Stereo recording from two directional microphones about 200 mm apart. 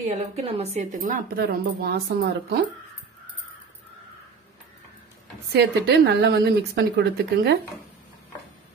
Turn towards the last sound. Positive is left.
turn(degrees=-50)  # may be behind; listen again after turning